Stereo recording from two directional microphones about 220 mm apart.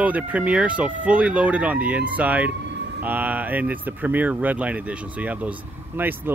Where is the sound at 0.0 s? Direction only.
5° right (ahead or behind).